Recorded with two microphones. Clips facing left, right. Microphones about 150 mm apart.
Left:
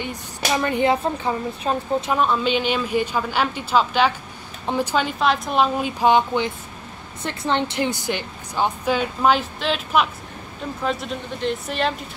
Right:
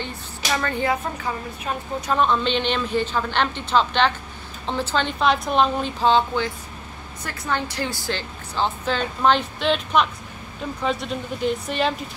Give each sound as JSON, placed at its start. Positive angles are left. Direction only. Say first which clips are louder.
{"t": 0.5, "sound": "speech", "louder": "left 4 dB", "side_deg": 20}
{"t": 2.1, "sound": "a woman's voice", "louder": "right 2 dB", "side_deg": 5}